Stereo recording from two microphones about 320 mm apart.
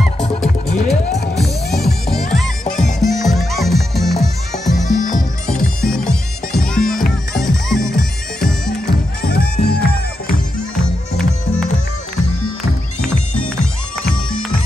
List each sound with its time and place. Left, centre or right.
0.2 s music: centre
4.8 s music: left
5.5 s music: centre
6.8 s music: left
7.3 s music: centre
8.0 s bagpipes: centre
8.6 s music: left